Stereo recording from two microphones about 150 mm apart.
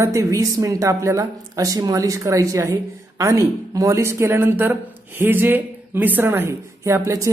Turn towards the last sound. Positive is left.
turn(degrees=-20)  # may be behind; listen again after turning